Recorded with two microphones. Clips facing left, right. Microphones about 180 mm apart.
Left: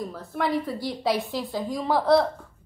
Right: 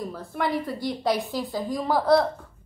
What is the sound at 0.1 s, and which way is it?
A woman's voice, centre (ahead or behind).